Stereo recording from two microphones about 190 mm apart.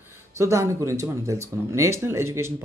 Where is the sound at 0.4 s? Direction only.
15° right (ahead or behind).